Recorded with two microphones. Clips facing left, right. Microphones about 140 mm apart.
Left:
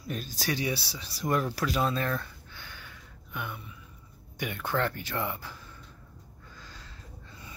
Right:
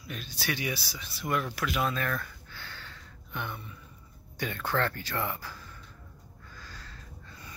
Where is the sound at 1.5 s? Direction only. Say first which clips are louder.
Left 2 dB; 35° left (ahead or behind); by 3.8 s 5° left (ahead or behind).